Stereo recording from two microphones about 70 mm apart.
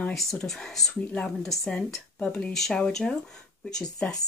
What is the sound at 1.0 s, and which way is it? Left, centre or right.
Speech, centre.